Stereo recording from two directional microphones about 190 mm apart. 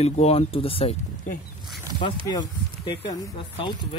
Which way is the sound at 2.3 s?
25° left (ahead or behind).